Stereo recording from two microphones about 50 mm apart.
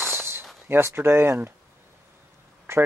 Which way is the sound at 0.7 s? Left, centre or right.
Right.